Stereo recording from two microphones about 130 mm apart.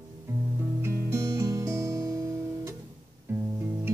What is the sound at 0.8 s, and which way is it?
Music, 20° right (ahead or behind).